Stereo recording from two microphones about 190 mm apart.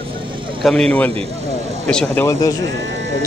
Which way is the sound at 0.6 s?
5° left (ahead or behind).